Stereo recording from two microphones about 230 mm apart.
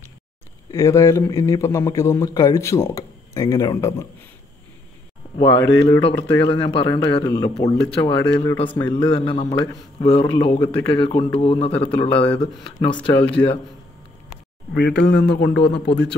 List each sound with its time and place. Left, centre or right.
0.7 s a man's voice: centre
5.4 s speech: left
12.9 s speech: centre
15.0 s a man's voice: left